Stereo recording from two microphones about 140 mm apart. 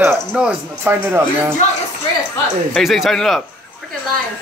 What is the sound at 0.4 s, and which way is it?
Speech, 15° right (ahead or behind).